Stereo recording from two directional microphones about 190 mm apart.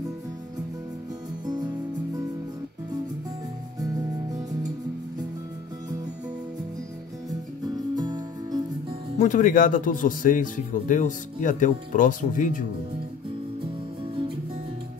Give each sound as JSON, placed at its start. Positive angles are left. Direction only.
{"t": 1.4, "sound": "music", "side_deg": -20}
{"t": 7.9, "sound": "music", "side_deg": -20}
{"t": 9.2, "sound": "speech", "side_deg": 40}